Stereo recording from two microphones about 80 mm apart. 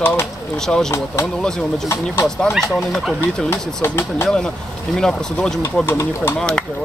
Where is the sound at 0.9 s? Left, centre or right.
Left.